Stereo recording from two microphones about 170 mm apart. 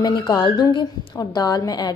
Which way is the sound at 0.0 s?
25° left (ahead or behind).